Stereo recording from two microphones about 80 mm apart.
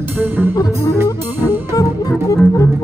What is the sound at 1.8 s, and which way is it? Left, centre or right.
Music, left.